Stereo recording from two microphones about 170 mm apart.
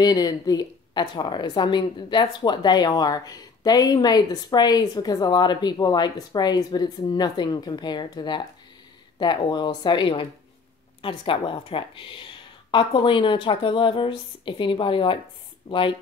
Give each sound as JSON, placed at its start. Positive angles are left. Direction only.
{"t": 0.0, "sound": "a woman's voice", "side_deg": 25}